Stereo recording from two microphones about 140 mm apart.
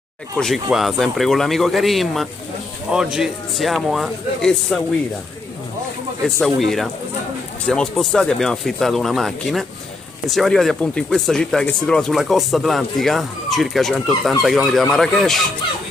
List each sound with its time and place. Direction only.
0.4 s speech: centre (ahead or behind)
6.4 s speech: centre (ahead or behind)